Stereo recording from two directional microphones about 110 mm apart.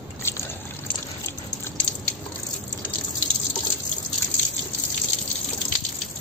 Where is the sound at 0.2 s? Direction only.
25° left (ahead or behind).